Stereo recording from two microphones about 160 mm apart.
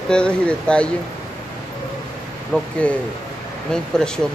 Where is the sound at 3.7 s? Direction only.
5° left (ahead or behind).